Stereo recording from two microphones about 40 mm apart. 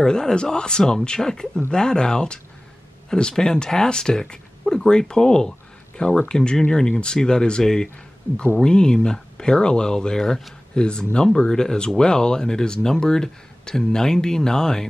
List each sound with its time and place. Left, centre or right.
0.0 s speech: centre